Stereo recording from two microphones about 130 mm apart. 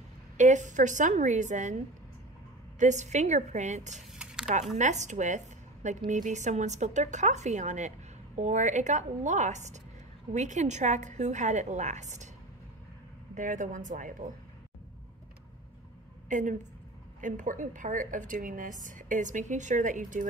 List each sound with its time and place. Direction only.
0.4 s a woman's voice: 70° right (ahead or behind)
2.8 s a woman's voice: 65° right (ahead or behind)
13.3 s a woman's voice: 80° right
16.3 s a woman's voice: 75° right (ahead or behind)